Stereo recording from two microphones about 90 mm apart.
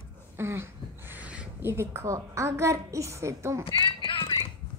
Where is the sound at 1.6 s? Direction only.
30° right (ahead or behind).